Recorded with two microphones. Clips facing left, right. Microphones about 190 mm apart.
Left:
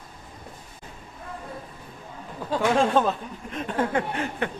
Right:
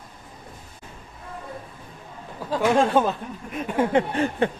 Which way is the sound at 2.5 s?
5° right (ahead or behind).